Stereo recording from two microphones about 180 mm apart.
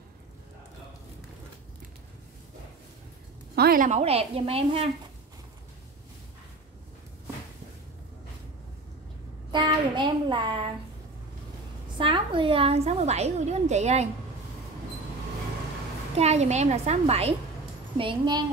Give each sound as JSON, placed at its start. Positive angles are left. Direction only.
{"t": 3.5, "sound": "a woman's voice", "side_deg": -55}
{"t": 9.5, "sound": "child singing", "side_deg": -25}
{"t": 12.0, "sound": "a woman's voice", "side_deg": -30}
{"t": 16.2, "sound": "a woman's voice", "side_deg": -40}